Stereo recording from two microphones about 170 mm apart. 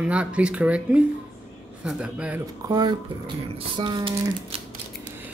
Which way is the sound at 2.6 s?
25° right (ahead or behind).